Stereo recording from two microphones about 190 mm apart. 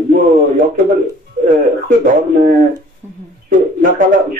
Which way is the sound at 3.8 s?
45° right (ahead or behind).